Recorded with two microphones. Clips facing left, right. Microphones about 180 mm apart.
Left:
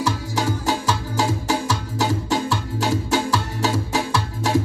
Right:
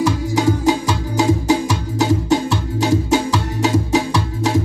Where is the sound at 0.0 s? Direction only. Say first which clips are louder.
Right 7 dB; 15° right (ahead or behind).